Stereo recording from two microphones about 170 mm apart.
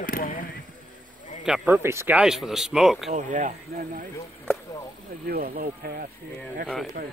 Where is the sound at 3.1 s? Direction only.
50° right (ahead or behind).